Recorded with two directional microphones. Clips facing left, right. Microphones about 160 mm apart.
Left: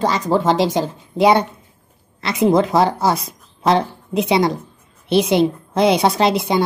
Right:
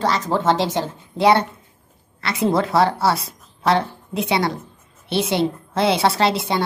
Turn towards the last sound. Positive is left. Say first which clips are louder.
# left 3 dB
turn(degrees=15)  # may be behind; listen again after turning